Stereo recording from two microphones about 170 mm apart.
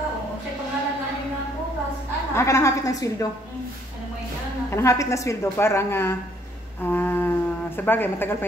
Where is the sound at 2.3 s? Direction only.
15° left (ahead or behind).